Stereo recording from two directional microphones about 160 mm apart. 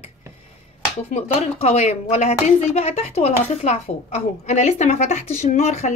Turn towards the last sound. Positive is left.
turn(degrees=45)  # may be behind; listen again after turning